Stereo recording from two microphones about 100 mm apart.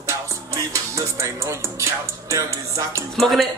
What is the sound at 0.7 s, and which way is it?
Music, 35° right (ahead or behind).